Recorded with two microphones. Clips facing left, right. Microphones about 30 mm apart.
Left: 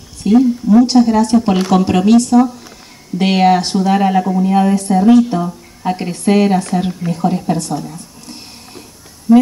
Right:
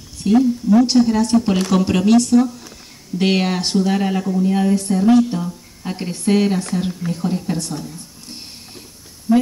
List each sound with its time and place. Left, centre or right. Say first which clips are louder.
0.2 s a woman's voice: left 4 dB; centre